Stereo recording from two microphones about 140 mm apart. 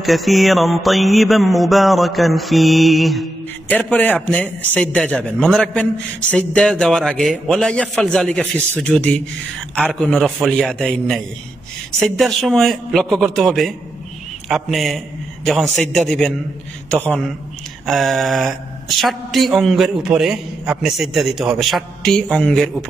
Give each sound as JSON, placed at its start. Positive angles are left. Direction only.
{"t": 0.0, "sound": "a woman's voice", "side_deg": 0}
{"t": 3.6, "sound": "a man's voice", "side_deg": 10}
{"t": 17.8, "sound": "a woman's voice", "side_deg": 0}